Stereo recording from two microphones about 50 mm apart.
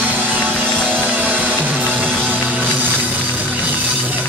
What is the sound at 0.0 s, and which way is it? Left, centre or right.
Music, right.